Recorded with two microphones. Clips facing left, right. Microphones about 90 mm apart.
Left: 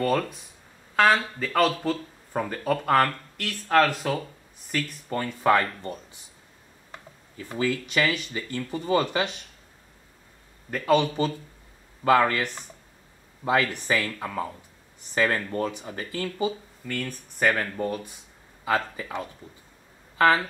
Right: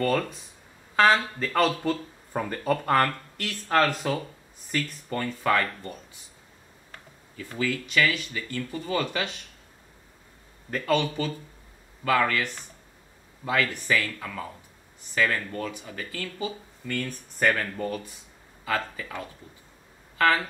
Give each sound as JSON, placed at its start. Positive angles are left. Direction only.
{"t": 0.0, "sound": "speech", "side_deg": 5}
{"t": 5.1, "sound": "speech", "side_deg": 15}
{"t": 12.0, "sound": "speech", "side_deg": 25}
{"t": 13.5, "sound": "speech", "side_deg": 25}
{"t": 16.8, "sound": "speech", "side_deg": 5}